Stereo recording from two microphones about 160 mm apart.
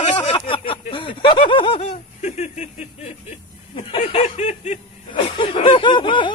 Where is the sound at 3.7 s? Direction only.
35° left (ahead or behind).